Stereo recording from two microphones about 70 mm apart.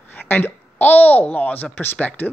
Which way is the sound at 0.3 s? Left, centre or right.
Left.